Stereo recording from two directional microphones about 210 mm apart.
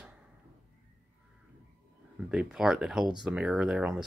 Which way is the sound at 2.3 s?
5° right (ahead or behind).